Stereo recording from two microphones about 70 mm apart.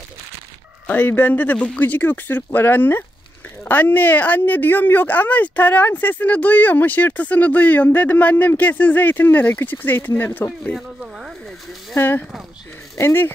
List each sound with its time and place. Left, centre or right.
0.8 s a woman's voice: left
11.9 s a woman's voice: left